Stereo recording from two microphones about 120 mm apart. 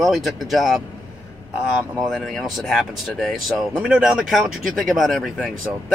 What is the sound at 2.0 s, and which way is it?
Speech, centre (ahead or behind).